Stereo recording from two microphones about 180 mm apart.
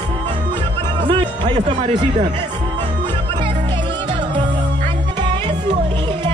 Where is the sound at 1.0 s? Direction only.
25° right (ahead or behind).